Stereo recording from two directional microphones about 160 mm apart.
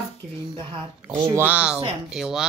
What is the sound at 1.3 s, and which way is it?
Speech, 10° right (ahead or behind).